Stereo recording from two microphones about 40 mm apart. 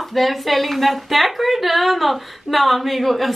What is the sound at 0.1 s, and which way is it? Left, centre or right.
A man's voice, centre.